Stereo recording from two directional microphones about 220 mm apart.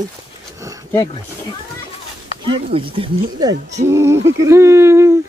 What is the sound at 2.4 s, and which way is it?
Speech, 25° right (ahead or behind).